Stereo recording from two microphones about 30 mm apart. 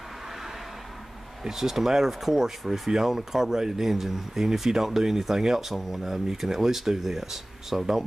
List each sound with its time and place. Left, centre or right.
1.4 s speech: centre